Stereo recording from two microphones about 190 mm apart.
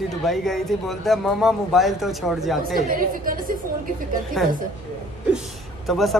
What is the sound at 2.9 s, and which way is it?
Speech, 45° right (ahead or behind).